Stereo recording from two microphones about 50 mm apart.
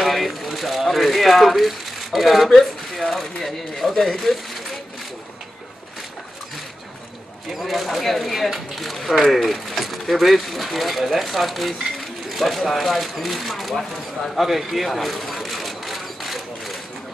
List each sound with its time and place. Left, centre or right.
0.0 s rattle: centre
3.1 s speech: centre
7.4 s speech: centre
14.3 s a sound: centre